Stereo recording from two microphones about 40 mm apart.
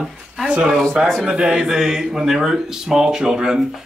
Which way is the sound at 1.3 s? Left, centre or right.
Centre.